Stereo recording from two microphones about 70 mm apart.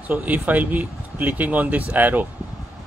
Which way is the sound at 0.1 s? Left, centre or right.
Right.